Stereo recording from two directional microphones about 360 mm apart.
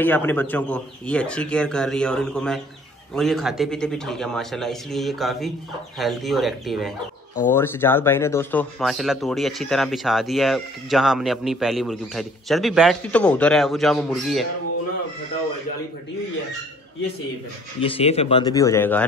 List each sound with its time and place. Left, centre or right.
0.0 s speech: centre
17.7 s speech: centre